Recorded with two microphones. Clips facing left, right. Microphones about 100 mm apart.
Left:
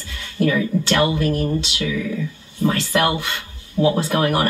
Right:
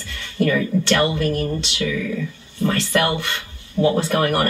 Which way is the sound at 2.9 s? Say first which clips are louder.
Left 1 dB; 10° left (ahead or behind).